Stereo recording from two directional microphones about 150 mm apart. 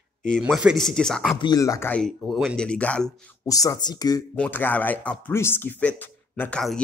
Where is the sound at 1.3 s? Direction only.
25° left (ahead or behind).